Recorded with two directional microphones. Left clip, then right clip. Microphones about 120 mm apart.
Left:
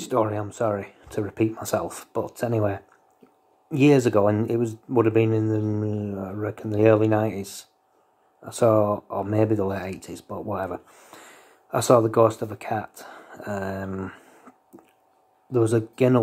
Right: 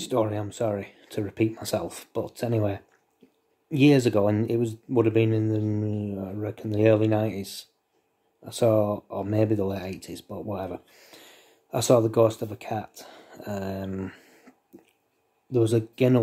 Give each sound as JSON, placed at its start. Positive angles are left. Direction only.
{"t": 0.0, "sound": "speech", "side_deg": -15}
{"t": 15.5, "sound": "speech", "side_deg": -15}